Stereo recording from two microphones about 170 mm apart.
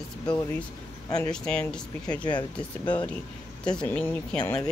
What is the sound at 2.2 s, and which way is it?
Speech, 25° left (ahead or behind).